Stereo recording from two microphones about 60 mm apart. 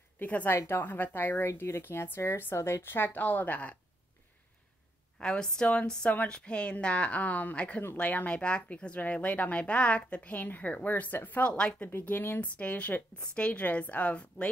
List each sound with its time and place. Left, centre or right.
0.2 s a woman's voice: left
3.1 s a woman's voice: left
5.2 s a woman's voice: centre